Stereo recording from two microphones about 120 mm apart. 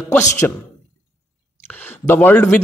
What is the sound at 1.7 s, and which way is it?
Speech, 15° left (ahead or behind).